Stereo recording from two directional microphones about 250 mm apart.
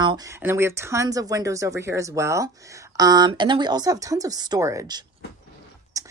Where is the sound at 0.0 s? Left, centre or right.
Centre.